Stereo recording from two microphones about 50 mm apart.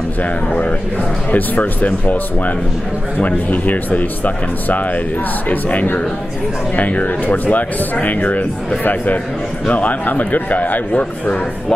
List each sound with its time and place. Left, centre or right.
0.2 s speech: left